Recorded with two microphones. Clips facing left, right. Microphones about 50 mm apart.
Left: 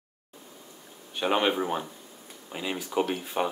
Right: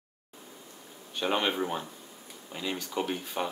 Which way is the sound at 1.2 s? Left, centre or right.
Centre.